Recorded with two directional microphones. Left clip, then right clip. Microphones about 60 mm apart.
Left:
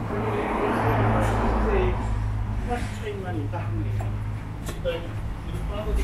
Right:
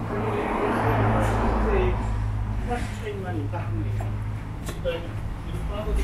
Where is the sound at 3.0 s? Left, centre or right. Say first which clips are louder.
Even; centre.